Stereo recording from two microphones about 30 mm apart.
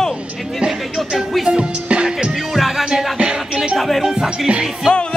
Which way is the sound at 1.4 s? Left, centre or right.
Right.